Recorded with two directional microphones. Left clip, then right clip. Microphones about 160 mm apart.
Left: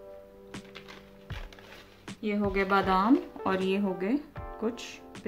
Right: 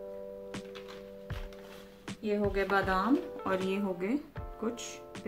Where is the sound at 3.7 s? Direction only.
30° left (ahead or behind).